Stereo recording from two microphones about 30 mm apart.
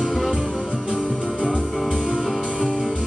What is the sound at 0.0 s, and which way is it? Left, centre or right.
Music, centre.